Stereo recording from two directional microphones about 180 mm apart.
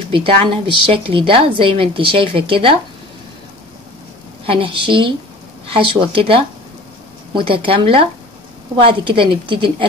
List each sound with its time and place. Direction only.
0.1 s speech: 30° right (ahead or behind)
4.5 s speech: 30° right (ahead or behind)